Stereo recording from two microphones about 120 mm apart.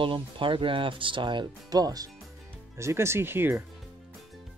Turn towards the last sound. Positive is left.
turn(degrees=-20)  # may be behind; listen again after turning